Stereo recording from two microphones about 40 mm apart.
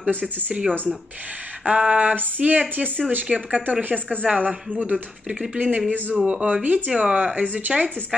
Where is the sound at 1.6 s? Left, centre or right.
Right.